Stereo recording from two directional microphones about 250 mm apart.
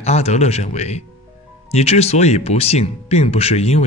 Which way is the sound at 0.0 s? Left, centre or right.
Left.